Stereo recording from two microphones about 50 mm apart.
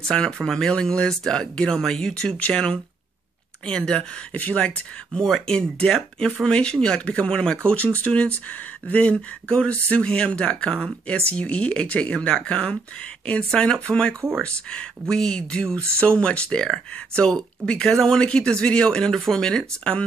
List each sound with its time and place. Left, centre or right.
0.0 s speech: centre
4.3 s speech: left
4.6 s speech: centre